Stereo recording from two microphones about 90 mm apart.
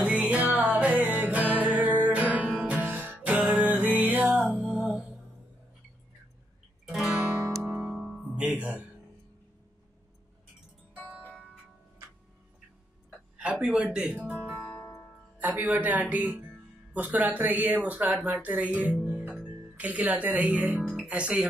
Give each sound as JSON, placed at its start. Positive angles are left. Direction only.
{"t": 0.0, "sound": "music", "side_deg": -15}
{"t": 4.6, "sound": "music", "side_deg": -10}
{"t": 6.9, "sound": "guitar", "side_deg": -5}
{"t": 7.8, "sound": "music", "side_deg": -5}
{"t": 13.4, "sound": "a sound", "side_deg": -10}
{"t": 13.9, "sound": "speech", "side_deg": -15}
{"t": 14.7, "sound": "music", "side_deg": 0}
{"t": 15.3, "sound": "speech", "side_deg": -20}
{"t": 20.8, "sound": "music", "side_deg": 0}
{"t": 21.1, "sound": "speech", "side_deg": -10}